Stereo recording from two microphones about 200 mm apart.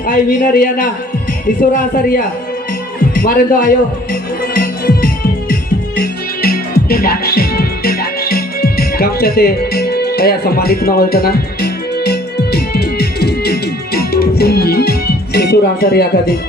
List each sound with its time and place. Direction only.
0.0 s a man's voice: 40° left (ahead or behind)
3.2 s music: 45° left (ahead or behind)